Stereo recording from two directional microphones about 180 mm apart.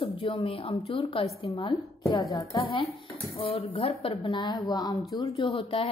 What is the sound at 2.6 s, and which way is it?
A woman's voice, 30° left (ahead or behind).